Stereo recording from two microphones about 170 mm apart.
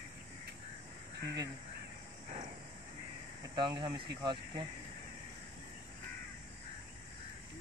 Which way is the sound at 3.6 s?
30° right (ahead or behind).